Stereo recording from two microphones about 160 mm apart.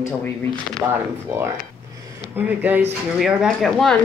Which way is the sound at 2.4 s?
10° right (ahead or behind).